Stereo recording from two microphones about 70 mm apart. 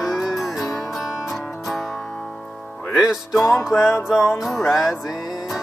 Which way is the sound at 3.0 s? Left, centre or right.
Centre.